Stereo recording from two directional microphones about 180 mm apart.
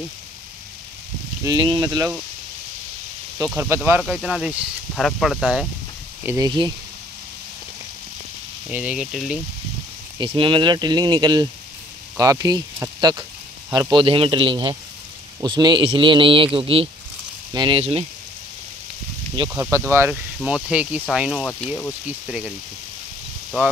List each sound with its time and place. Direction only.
1.4 s a man's voice: 25° right (ahead or behind)
3.4 s speech: 15° right (ahead or behind)
6.2 s a man's voice: 20° right (ahead or behind)
8.6 s speech: 5° right (ahead or behind)
10.1 s a man's voice: 30° right (ahead or behind)
13.7 s a man's voice: 20° right (ahead or behind)
19.5 s speech: 15° right (ahead or behind); by 21.9 s 5° left (ahead or behind)
22.0 s speech: 5° right (ahead or behind)